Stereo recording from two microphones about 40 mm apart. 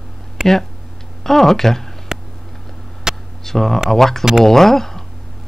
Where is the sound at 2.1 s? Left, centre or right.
Centre.